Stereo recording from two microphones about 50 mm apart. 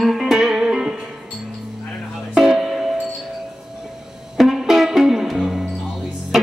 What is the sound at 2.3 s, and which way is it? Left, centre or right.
Music, centre.